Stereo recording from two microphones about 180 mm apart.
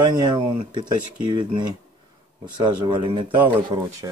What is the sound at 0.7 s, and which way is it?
Speech, 25° right (ahead or behind).